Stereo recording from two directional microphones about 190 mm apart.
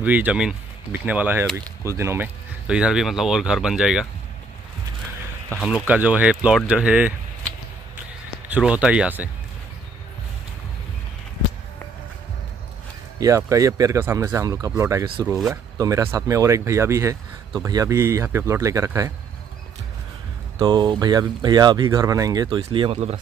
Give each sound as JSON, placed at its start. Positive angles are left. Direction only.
{"t": 0.0, "sound": "speech", "side_deg": -10}
{"t": 5.5, "sound": "speech", "side_deg": 0}
{"t": 8.5, "sound": "speech", "side_deg": -5}
{"t": 13.5, "sound": "speech", "side_deg": -15}
{"t": 15.2, "sound": "speech", "side_deg": 0}
{"t": 15.5, "sound": "speech", "side_deg": -15}
{"t": 20.5, "sound": "speech", "side_deg": -25}